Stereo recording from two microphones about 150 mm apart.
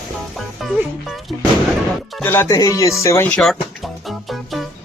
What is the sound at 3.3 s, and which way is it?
Music, centre (ahead or behind).